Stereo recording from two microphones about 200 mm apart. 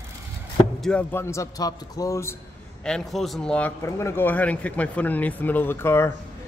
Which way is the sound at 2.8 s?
Centre (ahead or behind).